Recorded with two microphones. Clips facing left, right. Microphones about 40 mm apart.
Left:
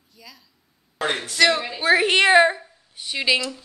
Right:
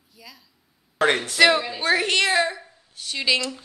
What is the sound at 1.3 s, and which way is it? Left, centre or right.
Speech, centre.